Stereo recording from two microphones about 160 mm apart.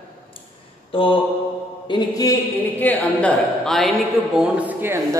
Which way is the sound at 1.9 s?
20° left (ahead or behind).